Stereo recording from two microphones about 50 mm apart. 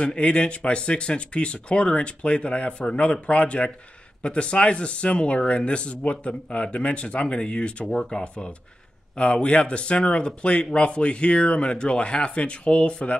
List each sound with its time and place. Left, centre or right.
0.0 s speech: left